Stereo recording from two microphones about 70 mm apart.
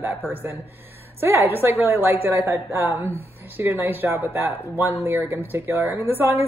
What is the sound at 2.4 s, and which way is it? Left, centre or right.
Speech, right.